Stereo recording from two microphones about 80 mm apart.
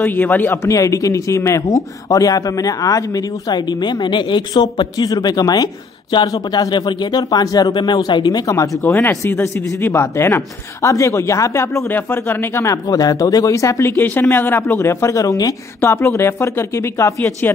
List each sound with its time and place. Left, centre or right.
0.0 s speech: left
0.7 s speech: left
7.7 s speech: left
8.8 s speech: left
9.1 s speech: left
12.8 s speech: left
13.9 s speech: left
15.8 s speech: left